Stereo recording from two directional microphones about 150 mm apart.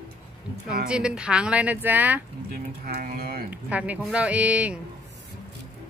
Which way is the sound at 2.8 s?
80° right.